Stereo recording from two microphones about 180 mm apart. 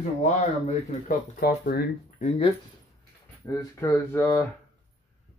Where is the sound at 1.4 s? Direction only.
60° left (ahead or behind).